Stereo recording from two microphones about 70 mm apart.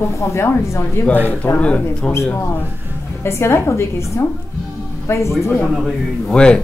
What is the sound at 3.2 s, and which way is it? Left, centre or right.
A woman's voice, left.